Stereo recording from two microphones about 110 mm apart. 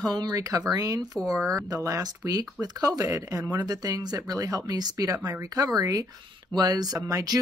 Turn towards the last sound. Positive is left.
turn(degrees=-35)  # may be behind; listen again after turning